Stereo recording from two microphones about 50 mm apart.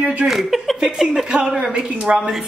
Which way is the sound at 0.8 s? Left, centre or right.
Centre.